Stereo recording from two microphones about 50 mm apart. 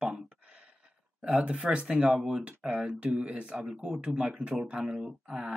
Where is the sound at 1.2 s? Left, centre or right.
Right.